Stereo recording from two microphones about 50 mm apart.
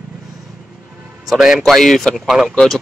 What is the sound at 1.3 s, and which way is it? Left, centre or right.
Speech, centre.